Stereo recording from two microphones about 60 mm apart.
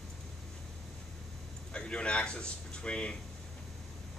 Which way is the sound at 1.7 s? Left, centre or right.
Centre.